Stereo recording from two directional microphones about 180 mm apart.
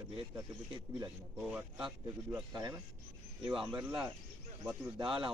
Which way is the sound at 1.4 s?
5° right (ahead or behind).